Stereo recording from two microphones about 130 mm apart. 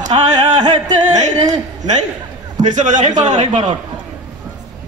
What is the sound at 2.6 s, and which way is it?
Music, 70° right (ahead or behind).